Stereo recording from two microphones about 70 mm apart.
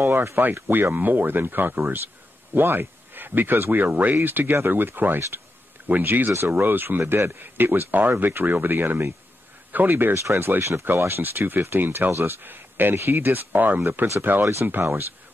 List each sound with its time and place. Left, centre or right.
0.0 s speech: right
10.1 s speech: right